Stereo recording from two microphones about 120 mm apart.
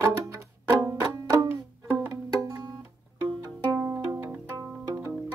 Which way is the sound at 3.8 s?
20° right (ahead or behind).